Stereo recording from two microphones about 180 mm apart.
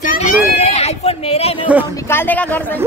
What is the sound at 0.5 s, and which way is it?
Speech, 35° left (ahead or behind).